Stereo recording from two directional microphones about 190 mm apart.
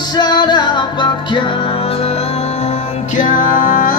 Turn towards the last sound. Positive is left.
turn(degrees=45)  # may be behind; listen again after turning